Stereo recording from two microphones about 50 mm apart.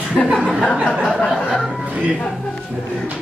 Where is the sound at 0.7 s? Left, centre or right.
Right.